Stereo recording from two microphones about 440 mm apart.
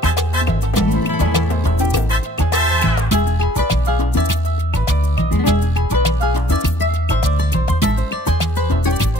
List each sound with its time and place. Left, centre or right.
0.7 s music: left
3.1 s music: left
5.3 s music: left